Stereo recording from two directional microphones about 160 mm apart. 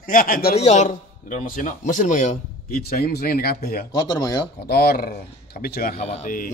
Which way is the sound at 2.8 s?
75° left (ahead or behind).